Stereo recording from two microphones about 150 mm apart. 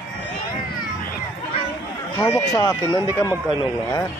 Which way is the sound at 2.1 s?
20° left (ahead or behind).